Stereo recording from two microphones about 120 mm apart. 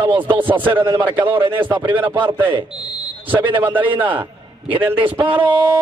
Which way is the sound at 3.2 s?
45° right (ahead or behind).